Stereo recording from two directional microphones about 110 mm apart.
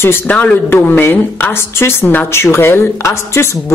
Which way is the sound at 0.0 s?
20° left (ahead or behind).